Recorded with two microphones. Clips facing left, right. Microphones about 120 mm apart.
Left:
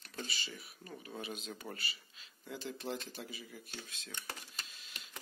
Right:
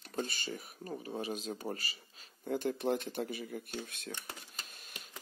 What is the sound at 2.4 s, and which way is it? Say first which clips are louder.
Speech: right 9 dB; 50° right (ahead or behind).